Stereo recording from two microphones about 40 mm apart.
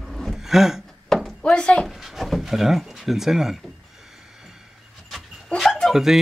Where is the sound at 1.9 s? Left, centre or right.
Centre.